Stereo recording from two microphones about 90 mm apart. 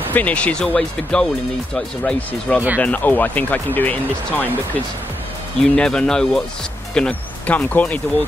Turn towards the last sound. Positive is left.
turn(degrees=15)  # may be behind; listen again after turning